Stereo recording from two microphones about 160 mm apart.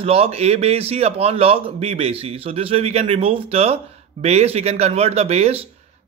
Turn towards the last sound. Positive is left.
turn(degrees=-40)  # may be behind; listen again after turning